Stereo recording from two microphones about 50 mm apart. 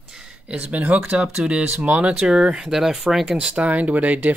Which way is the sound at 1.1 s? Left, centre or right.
Right.